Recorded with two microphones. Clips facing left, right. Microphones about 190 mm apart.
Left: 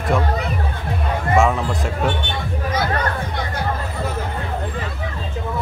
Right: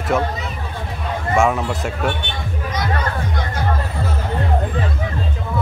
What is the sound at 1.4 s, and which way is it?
Speech, centre (ahead or behind).